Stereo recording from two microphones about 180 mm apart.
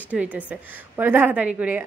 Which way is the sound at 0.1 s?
10° right (ahead or behind).